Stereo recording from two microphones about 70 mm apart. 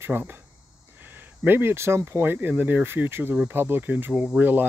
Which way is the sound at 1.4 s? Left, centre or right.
Right.